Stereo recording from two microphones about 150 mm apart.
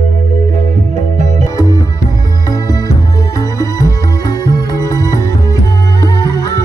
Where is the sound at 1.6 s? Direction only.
25° left (ahead or behind).